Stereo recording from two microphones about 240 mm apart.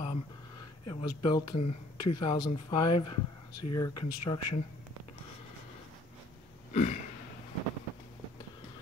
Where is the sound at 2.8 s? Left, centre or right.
Left.